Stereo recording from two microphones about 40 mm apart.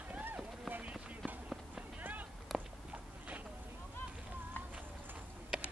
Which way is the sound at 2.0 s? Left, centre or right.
Right.